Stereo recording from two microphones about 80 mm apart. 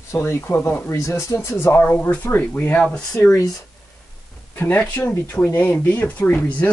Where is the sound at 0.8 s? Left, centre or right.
Left.